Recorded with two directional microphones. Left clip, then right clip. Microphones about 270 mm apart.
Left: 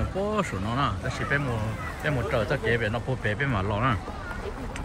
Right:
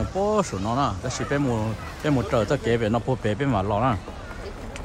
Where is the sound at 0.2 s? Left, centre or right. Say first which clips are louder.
Right 5 dB; centre.